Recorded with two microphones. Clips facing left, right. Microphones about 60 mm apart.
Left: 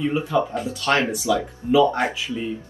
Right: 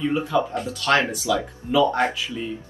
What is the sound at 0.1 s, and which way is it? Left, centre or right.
Speech, centre.